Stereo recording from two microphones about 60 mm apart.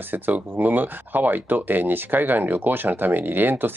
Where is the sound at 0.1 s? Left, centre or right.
Right.